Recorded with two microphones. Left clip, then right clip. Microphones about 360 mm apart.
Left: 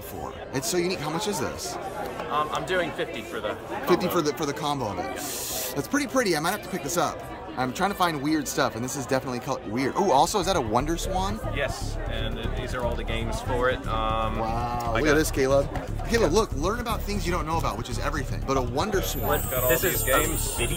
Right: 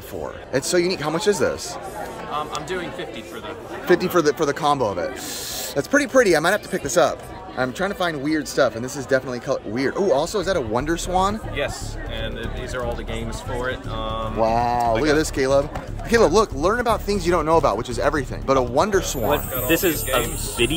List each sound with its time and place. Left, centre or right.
0.5 s speech: centre
2.7 s speech: centre
3.9 s speech: centre
13.1 s speech: centre
14.4 s speech: centre
19.7 s speech: right